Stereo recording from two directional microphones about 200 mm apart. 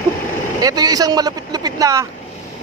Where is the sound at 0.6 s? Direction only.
20° right (ahead or behind).